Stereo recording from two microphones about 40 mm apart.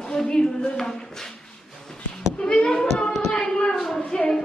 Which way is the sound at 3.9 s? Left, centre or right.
Centre.